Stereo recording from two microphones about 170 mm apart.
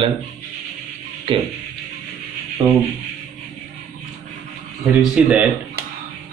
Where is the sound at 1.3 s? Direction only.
30° right (ahead or behind).